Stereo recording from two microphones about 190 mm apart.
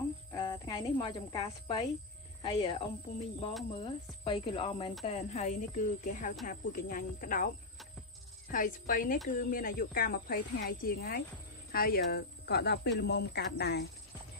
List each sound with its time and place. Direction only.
0.3 s speech: 25° left (ahead or behind)
3.8 s speech: 25° left (ahead or behind); by 7.4 s 45° left (ahead or behind)
8.5 s speech: 45° left (ahead or behind); by 13.8 s 60° left (ahead or behind)